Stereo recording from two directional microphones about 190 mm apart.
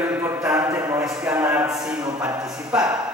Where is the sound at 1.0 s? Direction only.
5° right (ahead or behind).